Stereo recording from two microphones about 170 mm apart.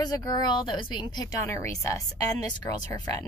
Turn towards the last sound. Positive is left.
turn(degrees=20)  # may be behind; listen again after turning